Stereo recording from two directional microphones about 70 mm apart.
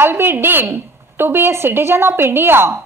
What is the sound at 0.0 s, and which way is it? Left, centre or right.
A woman's voice, right.